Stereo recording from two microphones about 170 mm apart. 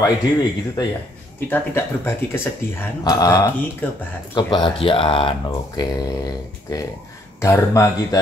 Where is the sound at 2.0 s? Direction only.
15° left (ahead or behind).